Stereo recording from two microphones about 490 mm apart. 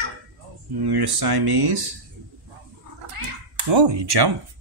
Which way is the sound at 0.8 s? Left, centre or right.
Right.